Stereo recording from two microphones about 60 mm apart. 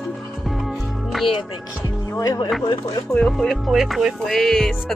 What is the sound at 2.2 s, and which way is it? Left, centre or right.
Speech, left.